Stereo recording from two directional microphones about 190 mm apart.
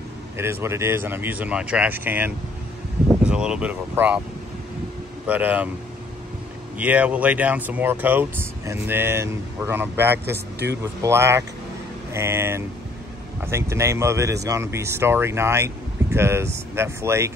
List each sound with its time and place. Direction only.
0.4 s speech: 15° right (ahead or behind)
5.2 s speech: 10° right (ahead or behind)
6.8 s speech: 5° right (ahead or behind)
10.2 s speech: 60° right (ahead or behind)
10.8 s speech: 15° right (ahead or behind)